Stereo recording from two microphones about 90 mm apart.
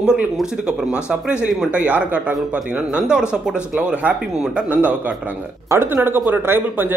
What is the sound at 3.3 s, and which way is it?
Speech, 15° right (ahead or behind).